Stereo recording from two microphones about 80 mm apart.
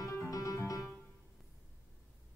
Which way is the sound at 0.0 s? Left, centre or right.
Left.